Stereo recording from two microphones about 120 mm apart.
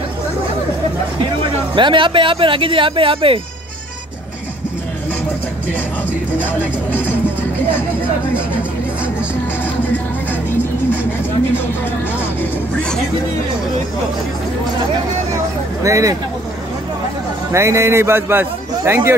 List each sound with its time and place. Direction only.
1.4 s speech: 45° right (ahead or behind)
7.0 s music: 15° left (ahead or behind)
12.4 s music: 10° left (ahead or behind)
15.8 s a man's voice: 25° right (ahead or behind)
17.5 s a man's voice: 25° right (ahead or behind)